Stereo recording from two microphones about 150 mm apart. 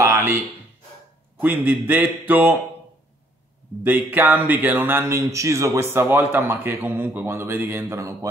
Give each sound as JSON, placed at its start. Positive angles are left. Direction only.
{"t": 0.0, "sound": "a sound", "side_deg": -20}
{"t": 1.4, "sound": "speech", "side_deg": -10}
{"t": 3.8, "sound": "speech", "side_deg": -10}